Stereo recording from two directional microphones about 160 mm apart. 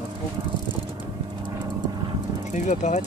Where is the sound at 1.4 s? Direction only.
25° right (ahead or behind).